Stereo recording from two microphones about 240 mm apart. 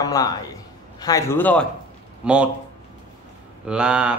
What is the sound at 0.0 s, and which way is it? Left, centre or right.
A man's voice, centre.